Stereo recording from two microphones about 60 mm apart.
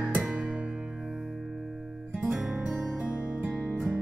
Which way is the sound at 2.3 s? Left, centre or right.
Centre.